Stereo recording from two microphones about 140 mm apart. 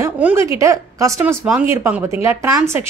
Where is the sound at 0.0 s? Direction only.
15° right (ahead or behind).